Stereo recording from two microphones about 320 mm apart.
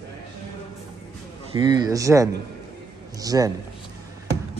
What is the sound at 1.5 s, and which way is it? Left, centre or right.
Speech, centre.